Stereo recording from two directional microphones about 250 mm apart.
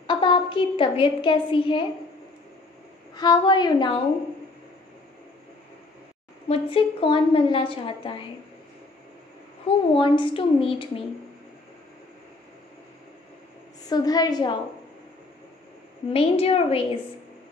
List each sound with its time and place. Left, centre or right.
0.0 s a woman's voice: centre
3.2 s a woman's voice: centre
6.5 s a woman's voice: left
9.7 s a woman's voice: centre
13.8 s a woman's voice: centre
16.1 s a woman's voice: left